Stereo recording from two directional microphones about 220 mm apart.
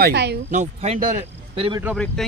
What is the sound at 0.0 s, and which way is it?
Speech, 50° right (ahead or behind).